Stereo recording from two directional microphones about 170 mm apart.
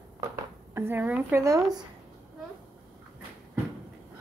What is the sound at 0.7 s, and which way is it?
A woman's voice, 15° right (ahead or behind).